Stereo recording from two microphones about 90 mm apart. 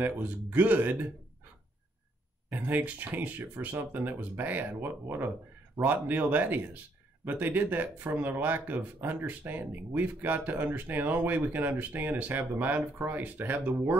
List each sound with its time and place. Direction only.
0.0 s speech: 20° right (ahead or behind)
2.5 s speech: 20° right (ahead or behind)